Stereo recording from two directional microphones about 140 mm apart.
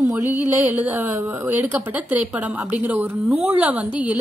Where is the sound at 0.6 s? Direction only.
10° right (ahead or behind).